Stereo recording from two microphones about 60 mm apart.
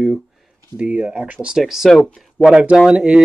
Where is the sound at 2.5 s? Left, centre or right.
Centre.